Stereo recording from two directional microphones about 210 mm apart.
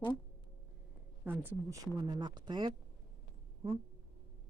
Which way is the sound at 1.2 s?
10° right (ahead or behind).